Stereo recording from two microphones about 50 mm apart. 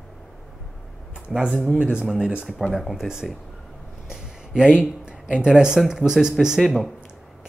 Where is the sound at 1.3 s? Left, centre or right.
Centre.